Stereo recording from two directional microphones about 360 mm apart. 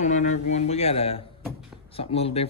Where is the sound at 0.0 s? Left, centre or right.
Centre.